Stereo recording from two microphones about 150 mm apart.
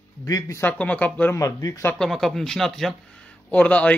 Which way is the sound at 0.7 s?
10° left (ahead or behind).